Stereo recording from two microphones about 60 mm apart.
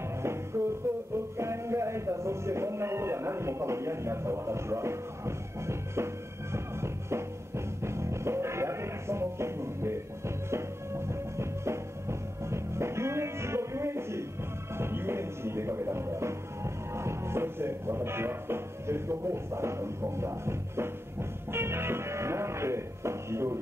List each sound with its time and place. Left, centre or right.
0.5 s music: right